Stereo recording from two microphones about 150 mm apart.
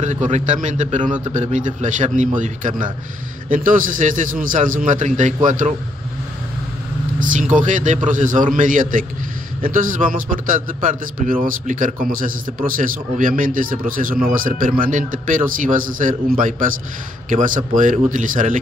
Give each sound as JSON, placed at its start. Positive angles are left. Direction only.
{"t": 0.0, "sound": "a man's voice", "side_deg": -50}
{"t": 7.2, "sound": "a man's voice", "side_deg": -60}